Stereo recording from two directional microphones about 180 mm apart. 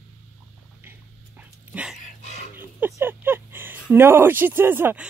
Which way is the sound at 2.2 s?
40° left (ahead or behind).